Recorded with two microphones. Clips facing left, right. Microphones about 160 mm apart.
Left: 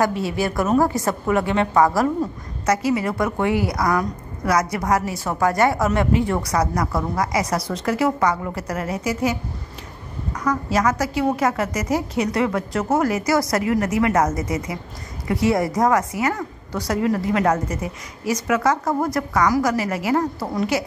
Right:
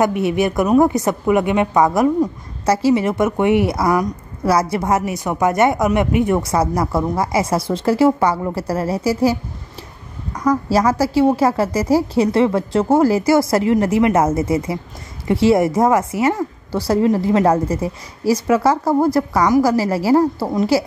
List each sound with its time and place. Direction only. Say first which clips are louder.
0.0 s a woman's voice: right 5 dB; 20° right (ahead or behind)
2.6 s a woman's voice: right 5 dB; 30° right (ahead or behind)